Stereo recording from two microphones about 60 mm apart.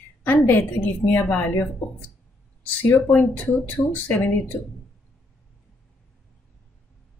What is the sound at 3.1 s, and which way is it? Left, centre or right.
Speech, left.